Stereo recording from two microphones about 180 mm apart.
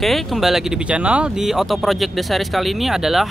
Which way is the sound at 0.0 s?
Centre (ahead or behind).